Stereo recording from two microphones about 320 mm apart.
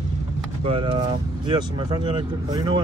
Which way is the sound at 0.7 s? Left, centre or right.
Centre.